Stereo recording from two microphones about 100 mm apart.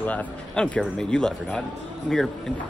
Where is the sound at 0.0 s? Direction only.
15° left (ahead or behind).